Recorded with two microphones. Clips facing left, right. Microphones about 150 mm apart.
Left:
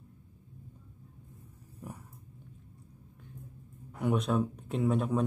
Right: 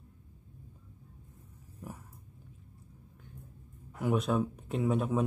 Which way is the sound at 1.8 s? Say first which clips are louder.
Even; centre (ahead or behind).